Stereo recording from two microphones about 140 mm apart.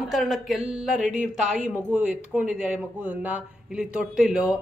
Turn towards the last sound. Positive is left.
turn(degrees=-5)  # may be behind; listen again after turning